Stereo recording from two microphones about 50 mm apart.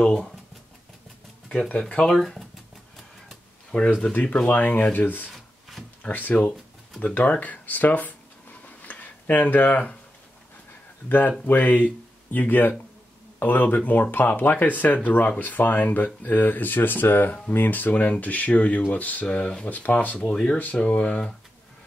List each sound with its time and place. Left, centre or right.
0.0 s speech: centre
1.8 s speech: centre
3.7 s speech: left
5.3 s a sound: centre
6.0 s speech: left
7.2 s a sound: left
11.1 s speech: left